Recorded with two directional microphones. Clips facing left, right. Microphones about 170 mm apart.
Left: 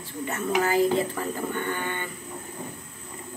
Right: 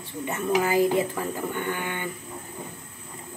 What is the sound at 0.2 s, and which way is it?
Speech, 15° right (ahead or behind).